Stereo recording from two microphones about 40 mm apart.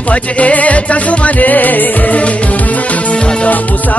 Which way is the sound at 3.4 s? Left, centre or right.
Left.